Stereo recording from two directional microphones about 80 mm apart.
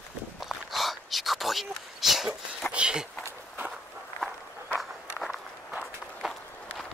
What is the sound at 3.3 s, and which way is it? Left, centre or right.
Walk, right.